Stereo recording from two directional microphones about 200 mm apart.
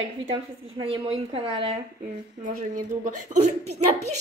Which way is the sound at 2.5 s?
35° right (ahead or behind).